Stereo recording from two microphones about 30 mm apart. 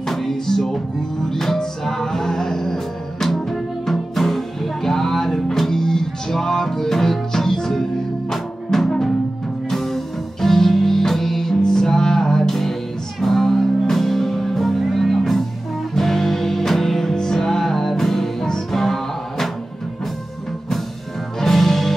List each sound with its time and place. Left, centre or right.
0.0 s music: centre
21.4 s music: centre